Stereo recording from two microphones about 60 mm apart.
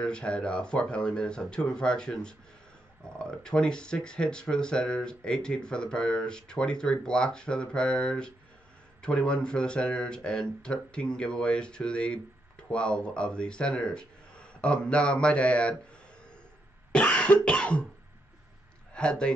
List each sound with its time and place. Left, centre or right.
0.0 s speech: centre
16.9 s cough: centre
18.9 s speech: centre